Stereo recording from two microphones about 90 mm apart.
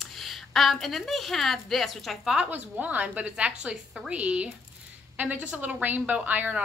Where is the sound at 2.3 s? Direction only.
15° right (ahead or behind).